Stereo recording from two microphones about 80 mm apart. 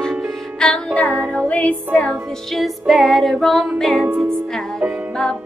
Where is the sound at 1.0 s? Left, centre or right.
Centre.